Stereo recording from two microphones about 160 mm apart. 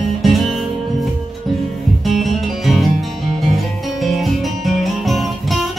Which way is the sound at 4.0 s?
Centre (ahead or behind).